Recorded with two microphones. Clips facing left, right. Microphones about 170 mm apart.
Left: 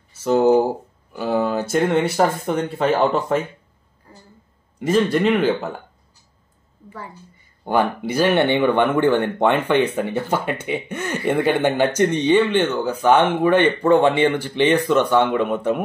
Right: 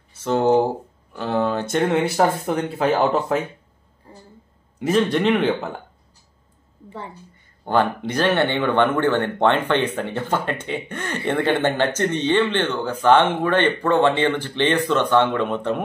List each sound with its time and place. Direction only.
0.2 s speech: 5° left (ahead or behind)
4.1 s a sound: 25° right (ahead or behind)
4.7 s speech: centre (ahead or behind)
7.6 s speech: 10° left (ahead or behind)